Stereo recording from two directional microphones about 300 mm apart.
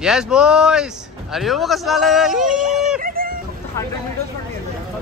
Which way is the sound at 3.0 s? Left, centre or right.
Right.